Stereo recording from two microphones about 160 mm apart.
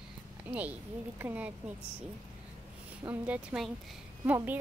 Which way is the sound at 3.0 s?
10° right (ahead or behind).